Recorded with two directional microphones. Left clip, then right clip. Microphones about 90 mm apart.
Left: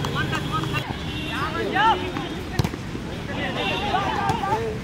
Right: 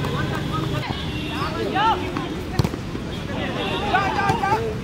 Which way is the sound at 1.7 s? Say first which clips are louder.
Left 1 dB; 40° left (ahead or behind).